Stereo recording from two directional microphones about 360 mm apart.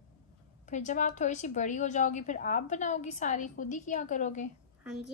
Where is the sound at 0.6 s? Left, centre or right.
Centre.